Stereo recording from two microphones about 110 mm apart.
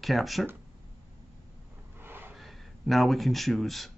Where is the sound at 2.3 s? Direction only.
Centre (ahead or behind).